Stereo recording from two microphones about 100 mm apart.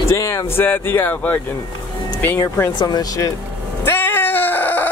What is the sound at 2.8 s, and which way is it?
Speech, 45° left (ahead or behind).